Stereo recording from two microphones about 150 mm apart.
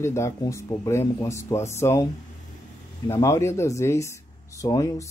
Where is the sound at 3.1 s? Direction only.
20° left (ahead or behind).